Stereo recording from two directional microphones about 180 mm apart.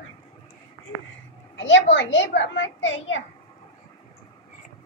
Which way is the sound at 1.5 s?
90° left.